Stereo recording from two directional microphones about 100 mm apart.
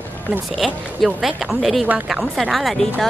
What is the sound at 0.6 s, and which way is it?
Speech, centre (ahead or behind).